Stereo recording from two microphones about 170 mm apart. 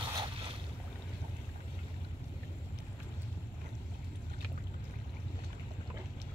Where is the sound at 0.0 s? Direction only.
30° right (ahead or behind).